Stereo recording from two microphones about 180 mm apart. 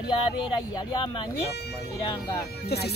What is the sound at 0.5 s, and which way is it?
Speech, 25° left (ahead or behind).